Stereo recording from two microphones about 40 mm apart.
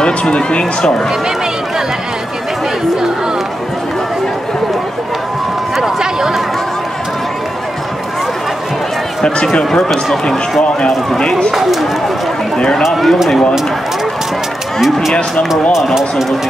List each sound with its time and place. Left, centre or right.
0.0 s speech: left
5.8 s a sound: centre
9.2 s speech: left
11.1 s speech: centre
12.5 s speech: centre
12.8 s speech: centre
15.7 s speech: centre